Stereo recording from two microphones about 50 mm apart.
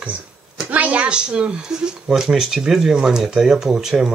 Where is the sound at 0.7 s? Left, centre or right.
Right.